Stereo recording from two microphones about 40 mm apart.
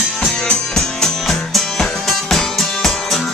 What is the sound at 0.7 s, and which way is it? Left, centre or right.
Music, centre.